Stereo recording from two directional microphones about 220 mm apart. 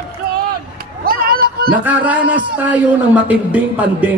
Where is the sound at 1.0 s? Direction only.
40° right (ahead or behind).